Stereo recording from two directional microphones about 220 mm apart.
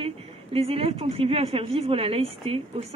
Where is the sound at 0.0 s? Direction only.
25° right (ahead or behind).